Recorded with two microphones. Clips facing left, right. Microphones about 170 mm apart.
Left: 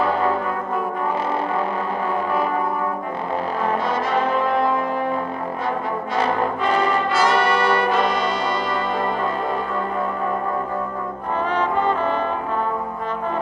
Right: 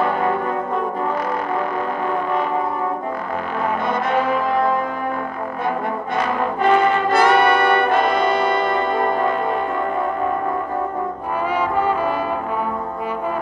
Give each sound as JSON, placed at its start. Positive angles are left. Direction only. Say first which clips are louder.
{"t": 6.7, "sound": "brass instrument", "louder": "right 5 dB", "side_deg": 35}
{"t": 7.1, "sound": "brass instrument", "louder": "right 4 dB", "side_deg": -55}
{"t": 11.5, "sound": "brass instrument", "louder": "right 1 dB", "side_deg": -10}